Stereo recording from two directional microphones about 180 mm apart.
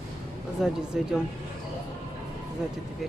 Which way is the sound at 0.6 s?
Centre (ahead or behind).